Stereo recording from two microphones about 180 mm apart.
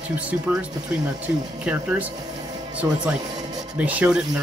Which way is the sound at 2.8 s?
15° right (ahead or behind).